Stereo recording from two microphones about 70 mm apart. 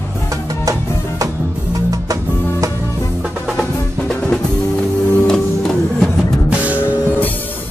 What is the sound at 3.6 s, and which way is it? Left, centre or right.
Music, centre.